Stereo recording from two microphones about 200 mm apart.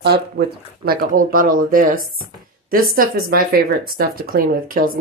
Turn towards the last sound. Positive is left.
turn(degrees=-45)  # may be behind; listen again after turning